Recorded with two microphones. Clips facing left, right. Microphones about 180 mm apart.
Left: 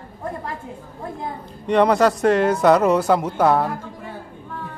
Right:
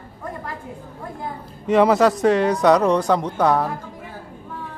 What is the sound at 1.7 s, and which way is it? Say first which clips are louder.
Speech: right 1 dB; 5° right (ahead or behind).